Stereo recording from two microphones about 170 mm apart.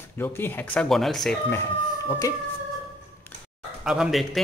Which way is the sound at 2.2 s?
20° left (ahead or behind).